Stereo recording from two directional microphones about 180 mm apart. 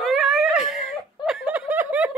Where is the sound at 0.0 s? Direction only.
Centre (ahead or behind).